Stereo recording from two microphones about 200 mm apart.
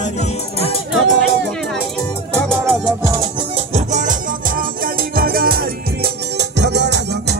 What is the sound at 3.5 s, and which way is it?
Music, 35° right (ahead or behind).